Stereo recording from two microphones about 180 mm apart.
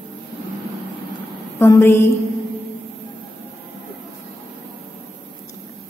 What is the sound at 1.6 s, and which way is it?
Speech, 15° left (ahead or behind).